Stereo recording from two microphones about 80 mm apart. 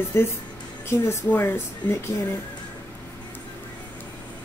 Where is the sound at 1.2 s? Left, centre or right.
Left.